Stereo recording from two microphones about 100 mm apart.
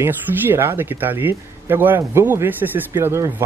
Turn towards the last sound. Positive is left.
turn(degrees=-25)  # may be behind; listen again after turning